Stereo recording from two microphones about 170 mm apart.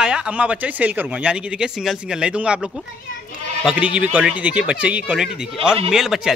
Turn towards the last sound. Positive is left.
turn(degrees=-5)  # may be behind; listen again after turning